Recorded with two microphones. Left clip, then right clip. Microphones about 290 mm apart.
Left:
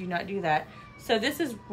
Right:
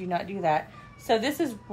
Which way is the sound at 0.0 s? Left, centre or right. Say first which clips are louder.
Right 3 dB; centre.